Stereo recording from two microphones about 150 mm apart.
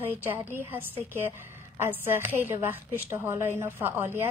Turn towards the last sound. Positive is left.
turn(degrees=-15)  # may be behind; listen again after turning